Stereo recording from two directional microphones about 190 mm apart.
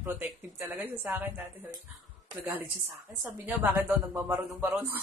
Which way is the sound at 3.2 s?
10° right (ahead or behind).